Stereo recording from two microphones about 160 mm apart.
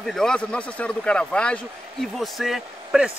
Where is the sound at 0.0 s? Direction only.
5° left (ahead or behind).